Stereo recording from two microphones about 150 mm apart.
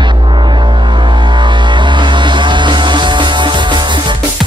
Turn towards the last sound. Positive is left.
turn(degrees=-30)  # may be behind; listen again after turning